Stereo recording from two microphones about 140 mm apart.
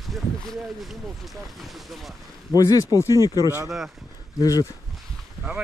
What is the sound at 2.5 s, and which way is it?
Speech, 25° left (ahead or behind).